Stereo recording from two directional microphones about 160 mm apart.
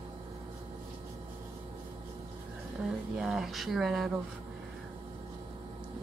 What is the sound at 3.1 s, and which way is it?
Speech, 5° right (ahead or behind).